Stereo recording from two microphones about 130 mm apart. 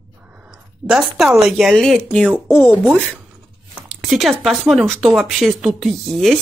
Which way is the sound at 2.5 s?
20° left (ahead or behind).